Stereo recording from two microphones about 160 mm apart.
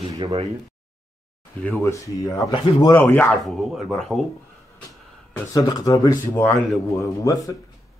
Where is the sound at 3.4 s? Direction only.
Centre (ahead or behind).